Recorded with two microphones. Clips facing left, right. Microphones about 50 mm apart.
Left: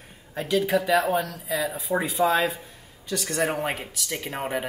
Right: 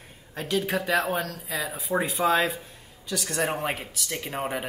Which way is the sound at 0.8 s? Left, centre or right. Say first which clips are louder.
Left 3 dB; centre.